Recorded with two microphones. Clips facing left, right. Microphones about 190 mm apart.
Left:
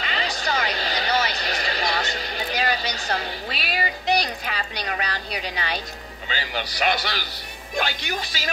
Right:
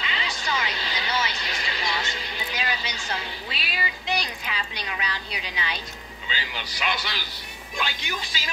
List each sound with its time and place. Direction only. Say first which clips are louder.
0.0 s a sound: left 4 dB; 40° left (ahead or behind)
6.2 s a man's voice: left 5 dB; 50° left (ahead or behind)
6.6 s a man's voice: left 7 dB; 40° left (ahead or behind)